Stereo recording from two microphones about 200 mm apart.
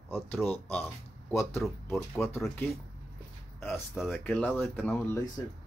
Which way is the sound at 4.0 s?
5° left (ahead or behind).